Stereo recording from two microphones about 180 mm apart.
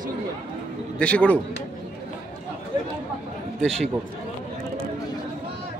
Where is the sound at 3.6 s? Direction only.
5° left (ahead or behind).